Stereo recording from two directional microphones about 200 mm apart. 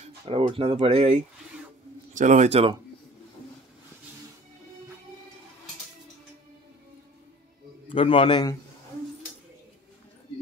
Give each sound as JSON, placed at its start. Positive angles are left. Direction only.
{"t": 0.2, "sound": "speech", "side_deg": -25}
{"t": 7.9, "sound": "a man's voice", "side_deg": 25}